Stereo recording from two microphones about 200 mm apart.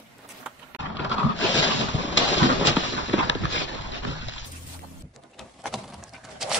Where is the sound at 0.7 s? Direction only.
65° left (ahead or behind).